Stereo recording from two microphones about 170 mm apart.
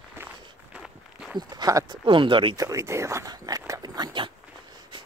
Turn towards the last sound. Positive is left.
turn(degrees=-25)  # may be behind; listen again after turning